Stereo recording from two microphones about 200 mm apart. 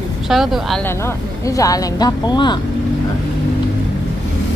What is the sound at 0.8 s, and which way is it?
Speech, 15° left (ahead or behind).